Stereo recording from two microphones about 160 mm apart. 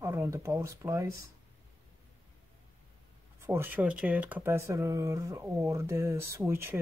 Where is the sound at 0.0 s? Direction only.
15° right (ahead or behind).